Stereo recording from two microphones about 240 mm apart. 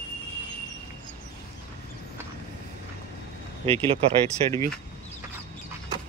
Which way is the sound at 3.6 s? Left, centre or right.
Right.